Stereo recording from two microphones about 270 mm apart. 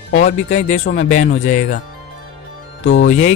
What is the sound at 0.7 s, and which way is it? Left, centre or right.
Speech, left.